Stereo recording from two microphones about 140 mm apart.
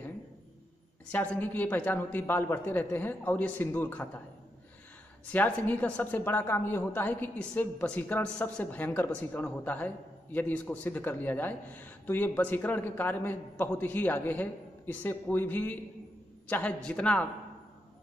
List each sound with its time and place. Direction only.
1.1 s a woman's voice: 10° left (ahead or behind)
5.3 s a woman's voice: 10° left (ahead or behind)